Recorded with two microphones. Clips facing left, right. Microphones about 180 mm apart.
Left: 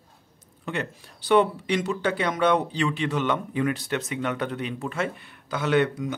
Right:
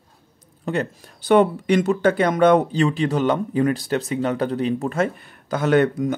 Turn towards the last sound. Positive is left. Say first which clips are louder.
# right 5 dB
turn(degrees=-45)  # may be behind; listen again after turning